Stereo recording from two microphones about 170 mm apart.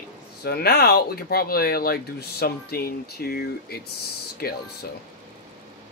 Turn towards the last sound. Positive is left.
turn(degrees=65)  # may be behind; listen again after turning